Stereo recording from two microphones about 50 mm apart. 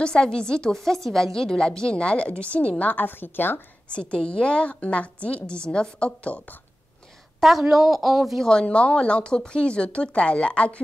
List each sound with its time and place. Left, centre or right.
0.0 s a woman's voice: centre; by 3.5 s left
3.9 s a woman's voice: centre
7.3 s a woman's voice: centre
8.4 s a woman's voice: centre